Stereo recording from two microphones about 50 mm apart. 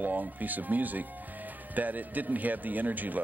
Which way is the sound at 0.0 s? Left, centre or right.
Right.